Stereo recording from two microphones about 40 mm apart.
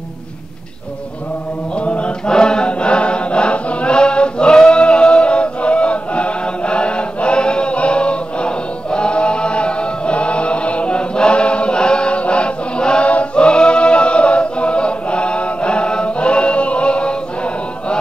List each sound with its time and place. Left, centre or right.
1.8 s mantra: left
2.3 s chant: centre
13.1 s a capella: left